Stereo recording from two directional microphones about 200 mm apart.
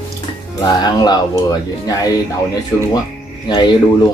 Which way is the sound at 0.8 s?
20° left (ahead or behind).